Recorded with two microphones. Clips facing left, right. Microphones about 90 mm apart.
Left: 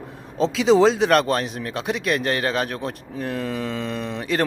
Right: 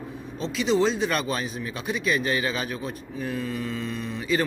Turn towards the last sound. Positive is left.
turn(degrees=80)